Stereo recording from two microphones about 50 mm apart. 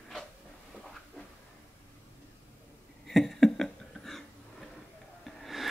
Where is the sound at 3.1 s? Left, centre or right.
Centre.